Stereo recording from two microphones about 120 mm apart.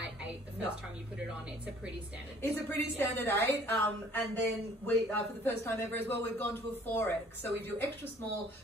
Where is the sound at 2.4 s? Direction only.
20° left (ahead or behind).